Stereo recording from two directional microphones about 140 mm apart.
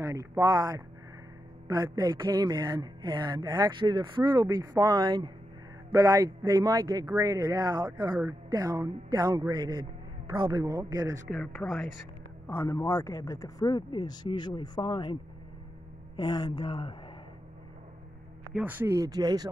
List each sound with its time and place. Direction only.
0.0 s a man's voice: 20° right (ahead or behind)
11.2 s speech: centre (ahead or behind)
12.4 s speech: 20° left (ahead or behind)
16.2 s speech: 30° left (ahead or behind)
18.5 s speech: 10° right (ahead or behind)
18.9 s a man's voice: 25° right (ahead or behind)